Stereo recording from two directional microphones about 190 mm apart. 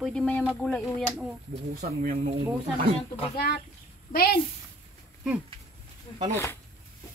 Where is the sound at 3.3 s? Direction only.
55° left (ahead or behind).